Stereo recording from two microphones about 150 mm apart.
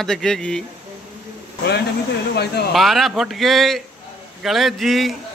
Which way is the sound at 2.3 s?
90° left.